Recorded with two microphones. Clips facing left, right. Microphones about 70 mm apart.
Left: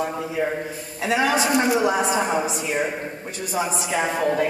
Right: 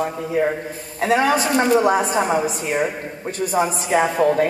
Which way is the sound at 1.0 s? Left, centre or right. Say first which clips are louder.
Right 3 dB; right.